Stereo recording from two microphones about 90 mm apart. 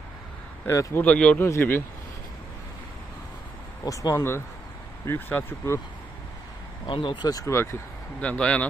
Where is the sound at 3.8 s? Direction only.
40° left (ahead or behind).